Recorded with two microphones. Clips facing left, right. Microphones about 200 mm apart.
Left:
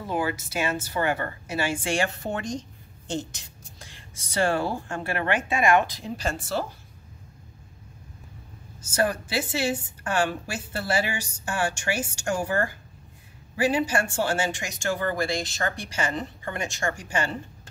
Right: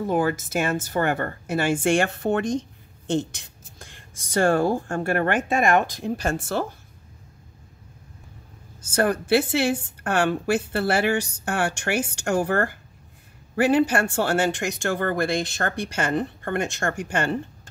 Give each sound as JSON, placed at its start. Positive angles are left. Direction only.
{"t": 0.1, "sound": "speech", "side_deg": -50}
{"t": 8.8, "sound": "a woman's voice", "side_deg": -55}